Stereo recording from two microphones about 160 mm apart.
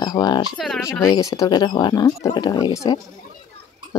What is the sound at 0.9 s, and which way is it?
Speech, 20° left (ahead or behind).